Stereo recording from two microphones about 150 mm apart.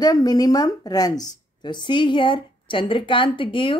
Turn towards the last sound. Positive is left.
turn(degrees=35)  # may be behind; listen again after turning